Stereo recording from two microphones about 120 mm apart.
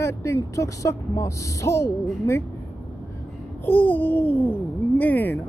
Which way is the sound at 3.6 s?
15° left (ahead or behind).